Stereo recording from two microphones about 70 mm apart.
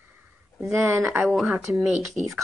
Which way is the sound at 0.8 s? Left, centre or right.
Right.